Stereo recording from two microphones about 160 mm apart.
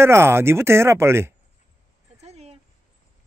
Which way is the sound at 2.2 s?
40° right (ahead or behind).